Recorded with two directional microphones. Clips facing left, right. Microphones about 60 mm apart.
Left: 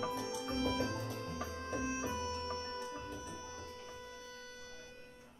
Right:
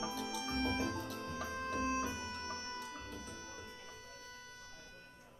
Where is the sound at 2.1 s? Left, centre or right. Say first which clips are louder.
Left 4 dB; right.